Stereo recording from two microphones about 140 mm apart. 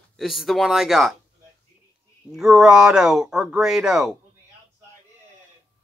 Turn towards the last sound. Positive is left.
turn(degrees=-5)  # may be behind; listen again after turning